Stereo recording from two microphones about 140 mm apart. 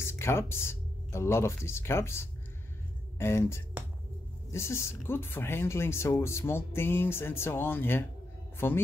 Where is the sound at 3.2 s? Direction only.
20° left (ahead or behind).